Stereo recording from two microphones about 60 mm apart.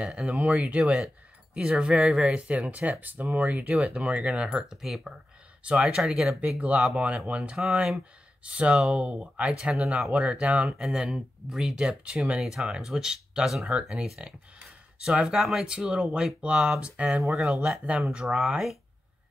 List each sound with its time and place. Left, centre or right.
0.0 s speech: centre
0.8 s speech: centre
5.6 s speech: centre
10.8 s speech: centre
12.4 s speech: centre
17.2 s speech: centre